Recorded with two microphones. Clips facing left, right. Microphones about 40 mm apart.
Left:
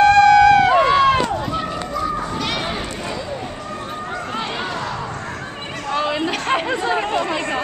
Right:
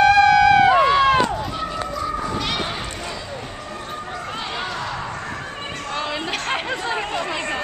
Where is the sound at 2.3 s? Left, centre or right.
Centre.